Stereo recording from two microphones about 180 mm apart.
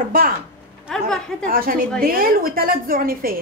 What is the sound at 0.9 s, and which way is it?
Speech, 5° left (ahead or behind).